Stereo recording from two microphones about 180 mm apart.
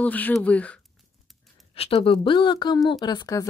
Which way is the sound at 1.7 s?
35° left (ahead or behind).